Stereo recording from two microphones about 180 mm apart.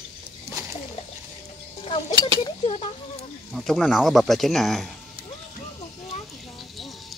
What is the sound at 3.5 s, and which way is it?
Speech, centre (ahead or behind).